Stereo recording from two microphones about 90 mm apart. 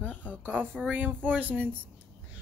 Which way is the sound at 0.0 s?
20° left (ahead or behind).